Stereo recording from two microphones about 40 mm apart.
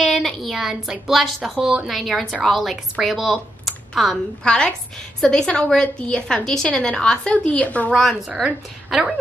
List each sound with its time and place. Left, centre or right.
0.0 s a sound: centre
0.4 s a woman's voice: centre
4.5 s a woman's voice: left
7.6 s a woman's voice: left
8.9 s a woman's voice: centre